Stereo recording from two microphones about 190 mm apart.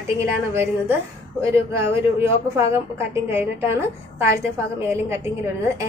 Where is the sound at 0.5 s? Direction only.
15° right (ahead or behind).